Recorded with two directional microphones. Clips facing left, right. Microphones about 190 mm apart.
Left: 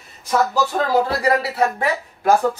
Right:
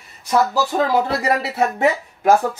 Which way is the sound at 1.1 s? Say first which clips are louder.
Left 1 dB; 25° right (ahead or behind).